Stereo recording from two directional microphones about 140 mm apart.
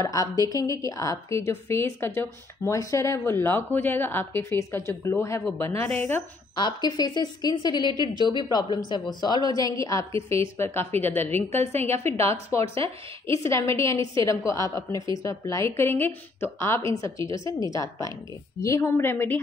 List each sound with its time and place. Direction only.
0.0 s a woman's voice: 25° left (ahead or behind)
6.5 s a woman's voice: 30° left (ahead or behind)
7.9 s a woman's voice: 25° right (ahead or behind)
8.3 s a woman's voice: 30° left (ahead or behind); by 11.4 s 15° left (ahead or behind)
11.5 s a woman's voice: 50° right (ahead or behind)
12.0 s a woman's voice: 20° left (ahead or behind)
12.6 s a woman's voice: 40° right (ahead or behind)
13.5 s a woman's voice: 20° left (ahead or behind)